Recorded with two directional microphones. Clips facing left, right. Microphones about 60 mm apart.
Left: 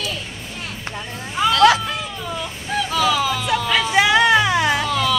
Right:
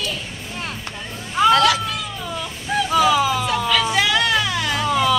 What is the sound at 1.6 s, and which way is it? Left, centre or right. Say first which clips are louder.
Music: left 4 dB; left.